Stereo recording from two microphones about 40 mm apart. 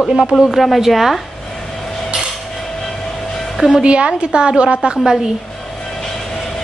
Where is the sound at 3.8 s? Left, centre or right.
Right.